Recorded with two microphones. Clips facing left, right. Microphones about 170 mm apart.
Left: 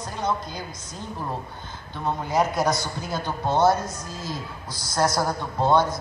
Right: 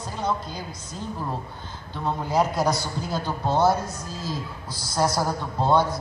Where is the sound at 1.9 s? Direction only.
15° left (ahead or behind).